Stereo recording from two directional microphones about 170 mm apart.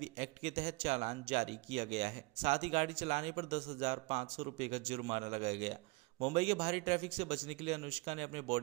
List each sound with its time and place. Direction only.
0.0 s a man's voice: 35° right (ahead or behind)